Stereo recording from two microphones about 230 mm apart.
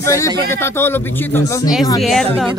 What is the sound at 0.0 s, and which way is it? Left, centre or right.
A man's voice, centre.